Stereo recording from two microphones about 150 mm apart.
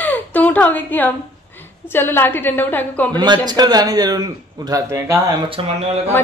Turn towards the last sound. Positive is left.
turn(degrees=-40)  # may be behind; listen again after turning